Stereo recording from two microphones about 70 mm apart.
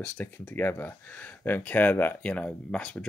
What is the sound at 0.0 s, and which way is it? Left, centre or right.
Speech, left.